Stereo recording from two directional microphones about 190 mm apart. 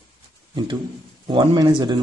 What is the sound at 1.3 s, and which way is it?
Speech, 25° right (ahead or behind).